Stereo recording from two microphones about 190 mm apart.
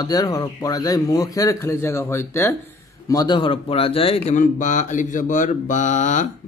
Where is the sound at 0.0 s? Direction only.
20° left (ahead or behind).